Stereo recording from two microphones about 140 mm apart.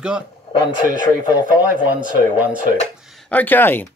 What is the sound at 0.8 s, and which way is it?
Speech, 80° right.